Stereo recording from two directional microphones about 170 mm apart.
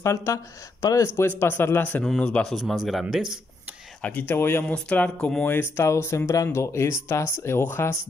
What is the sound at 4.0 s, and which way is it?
Speech, 10° left (ahead or behind).